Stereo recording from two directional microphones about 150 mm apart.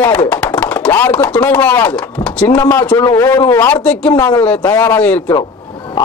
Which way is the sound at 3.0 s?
25° left (ahead or behind).